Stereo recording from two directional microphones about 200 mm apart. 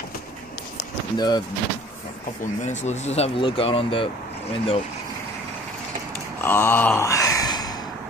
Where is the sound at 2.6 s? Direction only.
35° left (ahead or behind).